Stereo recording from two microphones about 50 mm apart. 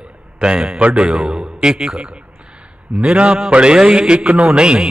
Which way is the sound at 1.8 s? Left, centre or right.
Centre.